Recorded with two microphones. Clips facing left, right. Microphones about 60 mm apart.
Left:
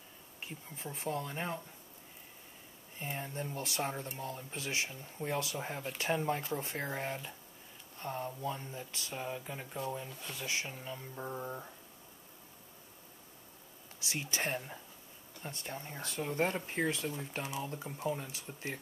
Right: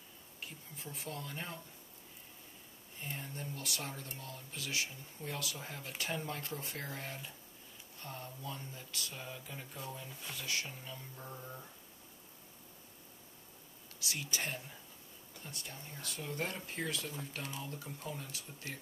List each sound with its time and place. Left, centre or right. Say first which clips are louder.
0.4 s speech: left 4 dB; left
3.0 s speech: left 5 dB; left
13.9 s speech: left 2 dB; left
14.4 s speech: left 5 dB; left
17.4 s speech: left 6 dB; centre
17.6 s speech: left 7 dB; left